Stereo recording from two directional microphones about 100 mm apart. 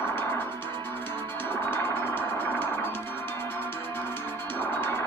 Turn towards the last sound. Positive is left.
turn(degrees=20)  # may be behind; listen again after turning